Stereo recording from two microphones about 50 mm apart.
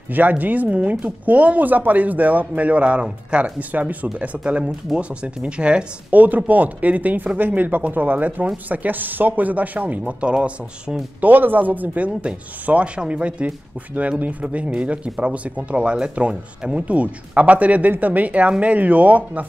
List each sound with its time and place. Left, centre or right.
0.1 s speech: right
6.1 s speech: right
11.1 s speech: right